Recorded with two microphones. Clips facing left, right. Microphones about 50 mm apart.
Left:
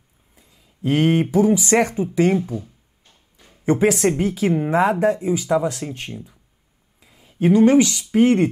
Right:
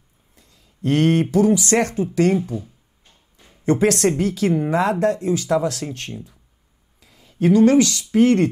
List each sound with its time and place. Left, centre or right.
0.4 s speech: centre
3.6 s speech: centre